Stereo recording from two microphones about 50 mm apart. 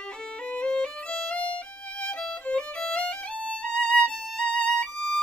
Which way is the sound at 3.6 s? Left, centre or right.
Centre.